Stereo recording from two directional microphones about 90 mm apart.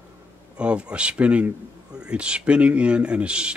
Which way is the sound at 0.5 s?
10° right (ahead or behind).